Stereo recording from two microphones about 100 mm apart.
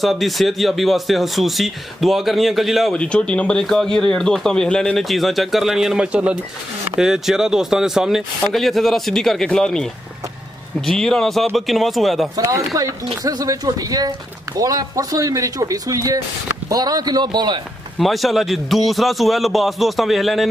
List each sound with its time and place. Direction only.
0.0 s speech: centre (ahead or behind)
2.9 s speech: 10° left (ahead or behind)
10.9 s speech: 5° left (ahead or behind)
12.4 s a man's voice: 35° right (ahead or behind)
17.9 s speech: centre (ahead or behind)